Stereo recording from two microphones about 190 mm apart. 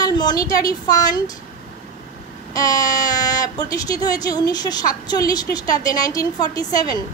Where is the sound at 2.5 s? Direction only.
20° left (ahead or behind).